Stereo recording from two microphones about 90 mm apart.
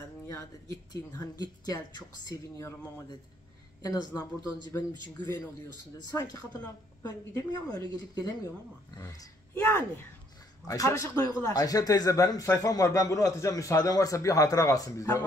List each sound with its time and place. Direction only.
0.3 s speech: 35° left (ahead or behind)
3.8 s a woman's voice: 45° left (ahead or behind)
6.3 s a woman's voice: 45° left (ahead or behind)
9.6 s speech: 25° left (ahead or behind)